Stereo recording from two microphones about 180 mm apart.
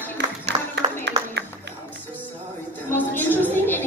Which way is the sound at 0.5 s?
25° right (ahead or behind).